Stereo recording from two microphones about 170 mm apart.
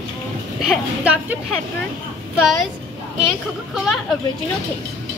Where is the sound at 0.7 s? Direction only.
5° right (ahead or behind).